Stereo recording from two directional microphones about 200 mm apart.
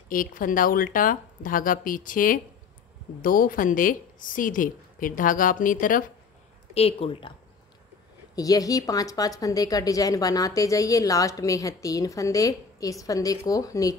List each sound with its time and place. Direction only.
0.1 s a woman's voice: 45° left (ahead or behind)
6.7 s speech: 30° left (ahead or behind)
8.4 s speech: 15° left (ahead or behind)